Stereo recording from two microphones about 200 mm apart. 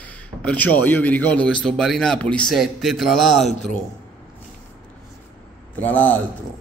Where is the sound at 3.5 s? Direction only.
35° left (ahead or behind).